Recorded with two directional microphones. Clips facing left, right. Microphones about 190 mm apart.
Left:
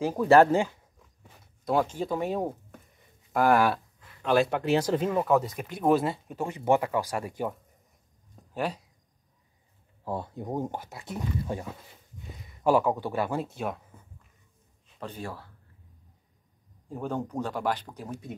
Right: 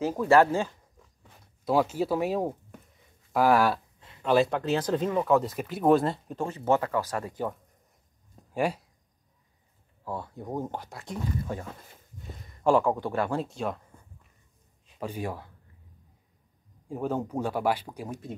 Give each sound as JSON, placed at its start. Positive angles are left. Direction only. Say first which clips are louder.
{"t": 0.0, "sound": "speech", "louder": "left 1 dB", "side_deg": 10}
{"t": 1.6, "sound": "speech", "louder": "right 2 dB", "side_deg": -5}
{"t": 8.5, "sound": "speech", "louder": "right 3 dB", "side_deg": -10}
{"t": 10.0, "sound": "speech", "louder": "left 2 dB", "side_deg": 20}
{"t": 10.8, "sound": "speech", "louder": "even", "side_deg": 5}
{"t": 11.4, "sound": "speech", "louder": "left 1 dB", "side_deg": 20}
{"t": 12.6, "sound": "speech", "louder": "even", "side_deg": 5}
{"t": 15.0, "sound": "speech", "louder": "right 4 dB", "side_deg": -10}
{"t": 16.9, "sound": "speech", "louder": "right 2 dB", "side_deg": -5}